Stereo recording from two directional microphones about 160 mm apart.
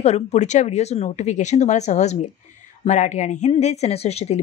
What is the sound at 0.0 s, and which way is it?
A woman's voice, 40° left (ahead or behind).